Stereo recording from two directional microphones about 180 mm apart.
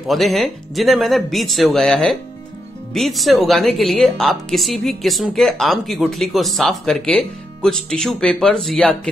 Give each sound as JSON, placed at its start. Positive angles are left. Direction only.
{"t": 0.0, "sound": "speech", "side_deg": 0}